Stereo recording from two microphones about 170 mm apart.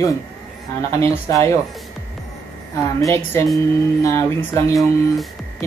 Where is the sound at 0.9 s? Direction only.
20° left (ahead or behind).